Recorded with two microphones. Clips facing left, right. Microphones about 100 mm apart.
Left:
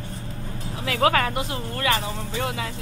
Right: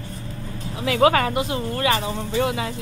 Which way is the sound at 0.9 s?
20° right (ahead or behind).